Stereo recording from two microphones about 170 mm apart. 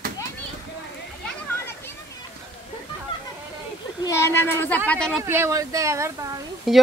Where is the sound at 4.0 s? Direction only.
15° left (ahead or behind).